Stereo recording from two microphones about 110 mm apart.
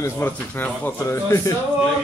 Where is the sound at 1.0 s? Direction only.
25° left (ahead or behind).